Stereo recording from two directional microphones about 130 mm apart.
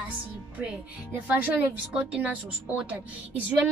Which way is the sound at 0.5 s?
15° right (ahead or behind).